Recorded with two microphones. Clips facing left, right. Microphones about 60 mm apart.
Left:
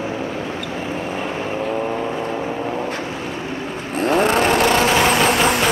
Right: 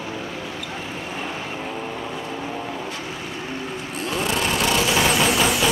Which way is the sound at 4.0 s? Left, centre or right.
Left.